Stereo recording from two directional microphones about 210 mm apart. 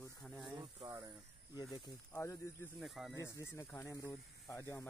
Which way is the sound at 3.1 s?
15° left (ahead or behind).